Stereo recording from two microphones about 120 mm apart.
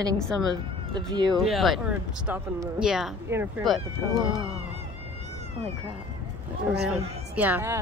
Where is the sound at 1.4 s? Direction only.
Centre (ahead or behind).